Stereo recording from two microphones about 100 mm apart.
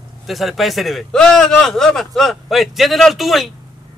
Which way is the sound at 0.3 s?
Centre (ahead or behind).